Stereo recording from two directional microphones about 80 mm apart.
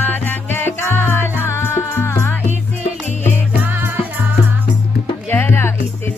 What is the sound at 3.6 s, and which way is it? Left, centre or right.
Music, right.